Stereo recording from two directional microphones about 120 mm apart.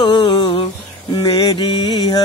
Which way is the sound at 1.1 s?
35° left (ahead or behind).